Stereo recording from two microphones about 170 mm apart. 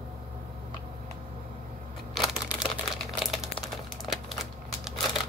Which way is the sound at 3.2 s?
Centre (ahead or behind).